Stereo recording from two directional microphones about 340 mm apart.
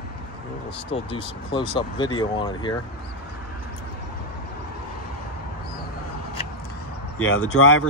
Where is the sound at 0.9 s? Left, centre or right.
Centre.